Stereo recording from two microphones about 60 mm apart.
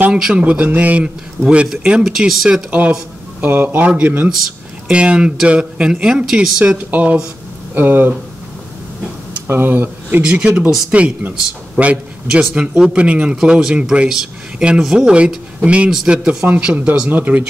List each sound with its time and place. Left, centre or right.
0.1 s speech: centre
0.5 s a man's voice: right
2.1 s speech: centre
3.3 s speech: right
4.3 s a sound: centre
4.9 s speech: centre
6.6 s a man's voice: right
9.5 s speech: right
10.2 s a man's voice: centre
12.3 s a man's voice: centre